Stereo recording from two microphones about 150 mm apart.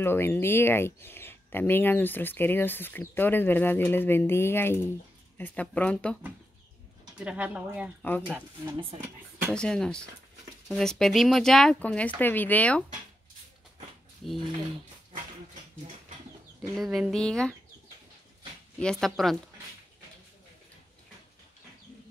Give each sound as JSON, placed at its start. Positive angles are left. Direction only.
{"t": 0.0, "sound": "speech", "side_deg": 15}
{"t": 7.2, "sound": "speech", "side_deg": -10}
{"t": 8.0, "sound": "speech", "side_deg": 10}
{"t": 8.6, "sound": "speech", "side_deg": -30}
{"t": 9.5, "sound": "speech", "side_deg": 5}
{"t": 16.7, "sound": "speech", "side_deg": 0}
{"t": 18.8, "sound": "speech", "side_deg": 5}